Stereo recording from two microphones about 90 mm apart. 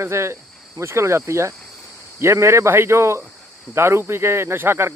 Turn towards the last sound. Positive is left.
turn(degrees=-25)  # may be behind; listen again after turning